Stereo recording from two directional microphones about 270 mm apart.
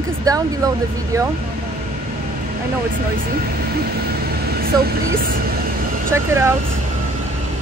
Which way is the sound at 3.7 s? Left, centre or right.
Right.